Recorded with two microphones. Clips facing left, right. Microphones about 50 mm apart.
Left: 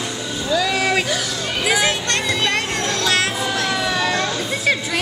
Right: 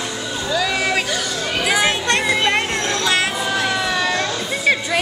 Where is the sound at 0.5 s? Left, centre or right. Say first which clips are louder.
Left 1 dB; centre.